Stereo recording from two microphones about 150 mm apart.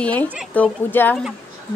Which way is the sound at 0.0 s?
10° left (ahead or behind).